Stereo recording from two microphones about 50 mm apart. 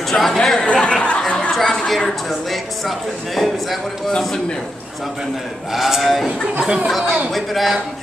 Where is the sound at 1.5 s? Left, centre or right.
Centre.